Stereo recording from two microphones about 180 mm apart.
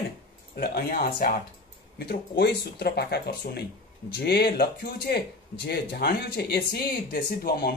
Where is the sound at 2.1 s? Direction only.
65° left (ahead or behind).